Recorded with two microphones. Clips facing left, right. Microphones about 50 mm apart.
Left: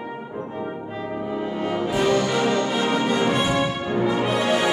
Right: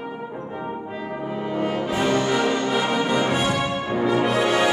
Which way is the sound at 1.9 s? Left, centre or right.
Right.